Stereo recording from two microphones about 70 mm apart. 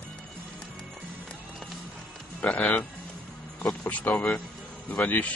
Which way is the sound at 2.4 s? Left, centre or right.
Centre.